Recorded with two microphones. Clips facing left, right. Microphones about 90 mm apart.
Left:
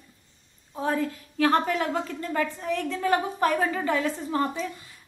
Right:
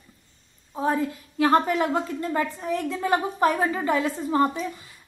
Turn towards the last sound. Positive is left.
turn(degrees=-15)  # may be behind; listen again after turning